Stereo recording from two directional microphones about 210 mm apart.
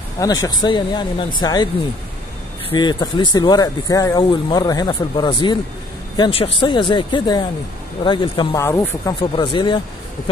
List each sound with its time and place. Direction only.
0.2 s speech: 15° left (ahead or behind)
2.7 s speech: 20° left (ahead or behind)